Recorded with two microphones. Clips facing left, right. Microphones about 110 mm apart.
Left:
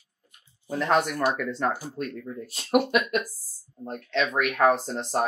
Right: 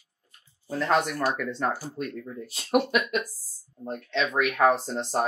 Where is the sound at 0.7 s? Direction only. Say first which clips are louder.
Left 1 dB; 10° left (ahead or behind).